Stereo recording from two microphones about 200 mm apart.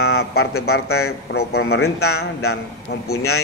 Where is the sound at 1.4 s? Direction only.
55° left (ahead or behind).